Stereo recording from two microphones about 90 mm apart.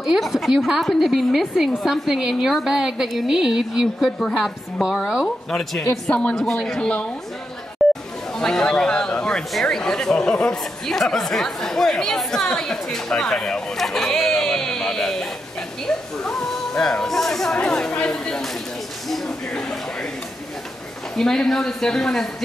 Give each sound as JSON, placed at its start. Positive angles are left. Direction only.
{"t": 0.0, "sound": "a man's voice", "side_deg": -5}
{"t": 7.8, "sound": "chatter", "side_deg": 0}
{"t": 8.4, "sound": "a man's voice", "side_deg": 5}
{"t": 15.9, "sound": "music", "side_deg": 5}
{"t": 19.0, "sound": "a sound", "side_deg": 5}
{"t": 21.2, "sound": "a man's voice", "side_deg": 5}